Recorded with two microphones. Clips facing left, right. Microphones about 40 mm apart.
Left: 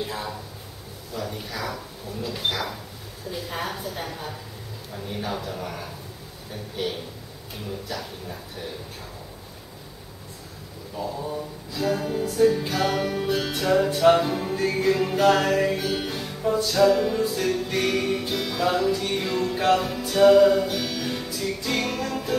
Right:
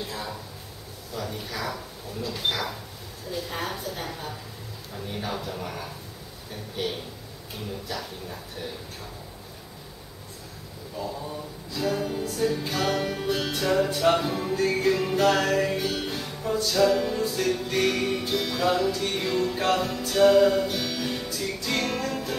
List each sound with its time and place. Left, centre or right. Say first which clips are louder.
0.0 s a sound: left 3 dB; centre
1.1 s music: left 1 dB; centre
11.0 s music: left 3 dB; centre